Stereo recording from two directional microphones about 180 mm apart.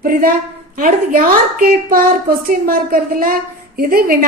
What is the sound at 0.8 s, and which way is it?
A woman's voice, 45° right (ahead or behind).